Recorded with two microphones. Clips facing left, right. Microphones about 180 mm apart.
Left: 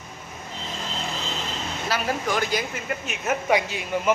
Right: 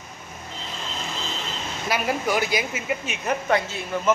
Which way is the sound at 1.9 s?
10° right (ahead or behind).